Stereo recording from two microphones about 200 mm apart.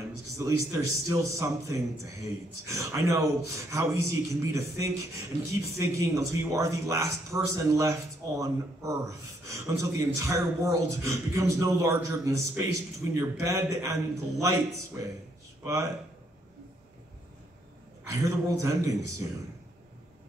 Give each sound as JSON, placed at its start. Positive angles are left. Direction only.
{"t": 0.4, "sound": "speech", "side_deg": -15}
{"t": 18.0, "sound": "speech", "side_deg": -15}